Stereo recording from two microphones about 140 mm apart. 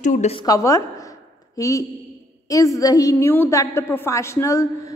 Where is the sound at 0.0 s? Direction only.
65° left (ahead or behind).